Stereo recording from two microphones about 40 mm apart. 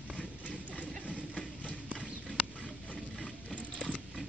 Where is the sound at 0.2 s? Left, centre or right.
Left.